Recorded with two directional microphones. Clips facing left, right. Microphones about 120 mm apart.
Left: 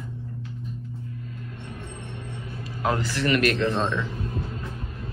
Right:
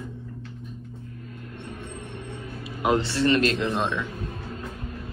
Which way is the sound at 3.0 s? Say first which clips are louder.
Right 1 dB; 30° right (ahead or behind).